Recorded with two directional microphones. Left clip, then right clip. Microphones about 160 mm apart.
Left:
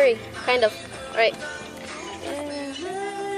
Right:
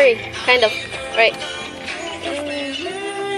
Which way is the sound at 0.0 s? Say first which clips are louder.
Right 5 dB; 10° left (ahead or behind).